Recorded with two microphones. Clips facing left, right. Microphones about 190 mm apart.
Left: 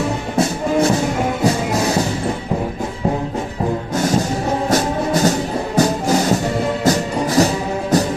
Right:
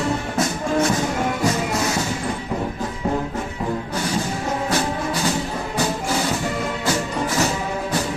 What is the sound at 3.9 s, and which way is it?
Music, 45° left (ahead or behind).